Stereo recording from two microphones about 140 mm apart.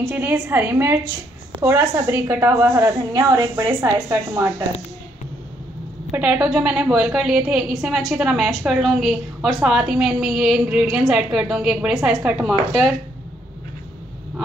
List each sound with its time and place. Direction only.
0.1 s a woman's voice: 15° right (ahead or behind)
6.1 s a woman's voice: 10° right (ahead or behind)